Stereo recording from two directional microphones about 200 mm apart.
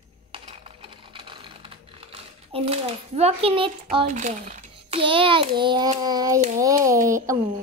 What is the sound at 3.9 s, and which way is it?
A child's voice, 35° right (ahead or behind).